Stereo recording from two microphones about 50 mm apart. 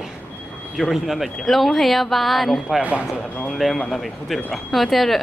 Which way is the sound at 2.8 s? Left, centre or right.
Right.